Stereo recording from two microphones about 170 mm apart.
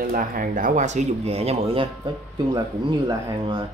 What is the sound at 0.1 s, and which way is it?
Speech, 55° right (ahead or behind).